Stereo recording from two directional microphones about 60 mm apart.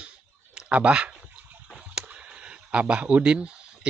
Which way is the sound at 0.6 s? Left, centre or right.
Right.